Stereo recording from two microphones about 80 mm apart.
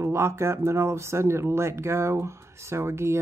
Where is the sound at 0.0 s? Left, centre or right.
Right.